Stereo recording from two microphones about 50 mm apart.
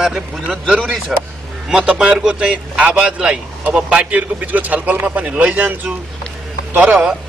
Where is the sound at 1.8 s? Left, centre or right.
Centre; by 6.9 s right.